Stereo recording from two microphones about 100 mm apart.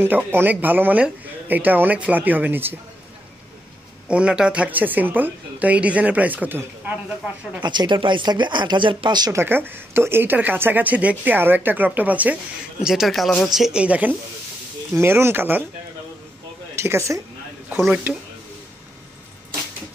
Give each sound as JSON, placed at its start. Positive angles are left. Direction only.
{"t": 0.0, "sound": "speech", "side_deg": -20}
{"t": 4.1, "sound": "speech", "side_deg": -10}
{"t": 7.6, "sound": "speech", "side_deg": -50}
{"t": 9.3, "sound": "speech", "side_deg": -25}
{"t": 12.8, "sound": "speech", "side_deg": -5}
{"t": 15.0, "sound": "speech", "side_deg": -25}
{"t": 16.7, "sound": "speech", "side_deg": -30}
{"t": 17.8, "sound": "speech", "side_deg": -10}